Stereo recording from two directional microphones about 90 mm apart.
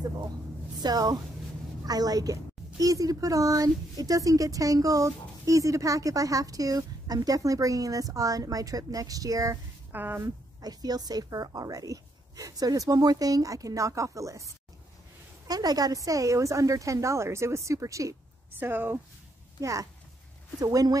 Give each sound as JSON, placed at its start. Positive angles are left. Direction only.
{"t": 0.8, "sound": "a woman's voice", "side_deg": -45}
{"t": 9.9, "sound": "speech", "side_deg": -25}
{"t": 10.2, "sound": "a woman's voice", "side_deg": -45}
{"t": 18.6, "sound": "speech", "side_deg": -20}
{"t": 19.6, "sound": "a woman's voice", "side_deg": -40}